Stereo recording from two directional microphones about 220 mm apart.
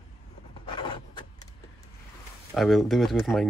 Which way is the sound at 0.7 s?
20° left (ahead or behind).